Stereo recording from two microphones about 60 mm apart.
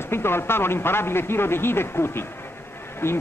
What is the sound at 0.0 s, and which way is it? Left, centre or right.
A man's voice, left.